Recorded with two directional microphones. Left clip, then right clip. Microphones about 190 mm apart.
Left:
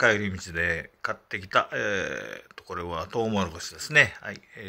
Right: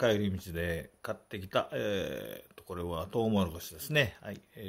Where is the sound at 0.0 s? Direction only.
20° right (ahead or behind).